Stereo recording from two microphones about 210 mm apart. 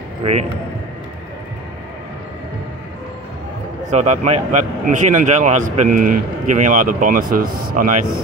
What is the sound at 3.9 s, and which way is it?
A man's voice, 35° right (ahead or behind).